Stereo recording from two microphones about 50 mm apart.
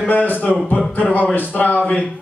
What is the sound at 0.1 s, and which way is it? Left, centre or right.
A man's voice, left.